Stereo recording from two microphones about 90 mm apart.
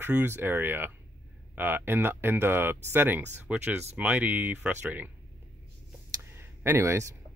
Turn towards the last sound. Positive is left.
turn(degrees=-30)  # may be behind; listen again after turning